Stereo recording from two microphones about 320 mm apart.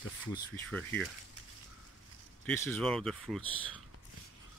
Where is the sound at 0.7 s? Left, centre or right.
Centre.